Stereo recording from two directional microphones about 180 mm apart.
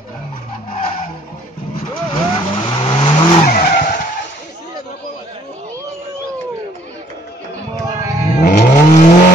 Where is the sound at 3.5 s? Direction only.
50° left (ahead or behind).